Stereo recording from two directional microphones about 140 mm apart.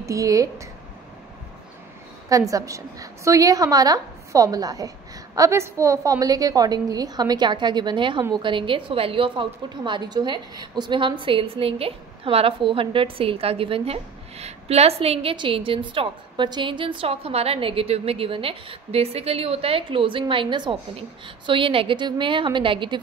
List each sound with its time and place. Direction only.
0.0 s a woman's voice: 25° right (ahead or behind)
2.2 s a woman's voice: 25° right (ahead or behind)